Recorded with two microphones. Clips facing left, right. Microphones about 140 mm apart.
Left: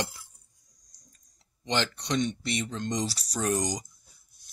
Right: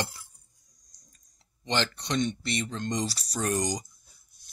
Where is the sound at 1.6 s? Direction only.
10° left (ahead or behind).